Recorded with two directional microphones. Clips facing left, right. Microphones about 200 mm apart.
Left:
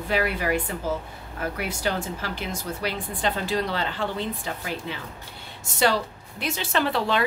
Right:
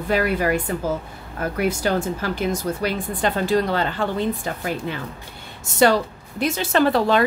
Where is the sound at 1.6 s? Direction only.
45° right (ahead or behind).